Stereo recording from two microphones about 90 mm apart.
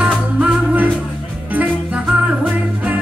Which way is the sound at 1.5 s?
15° right (ahead or behind).